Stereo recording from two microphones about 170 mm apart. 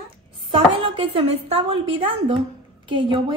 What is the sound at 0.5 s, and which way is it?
A woman's voice, 30° right (ahead or behind).